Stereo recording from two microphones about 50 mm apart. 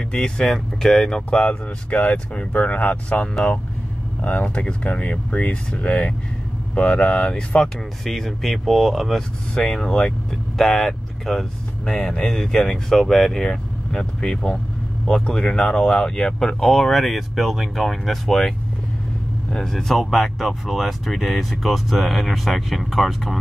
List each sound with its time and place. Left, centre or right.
0.1 s speech: centre
1.4 s speech: left
7.2 s speech: centre
9.7 s speech: centre
11.8 s speech: centre
19.5 s speech: centre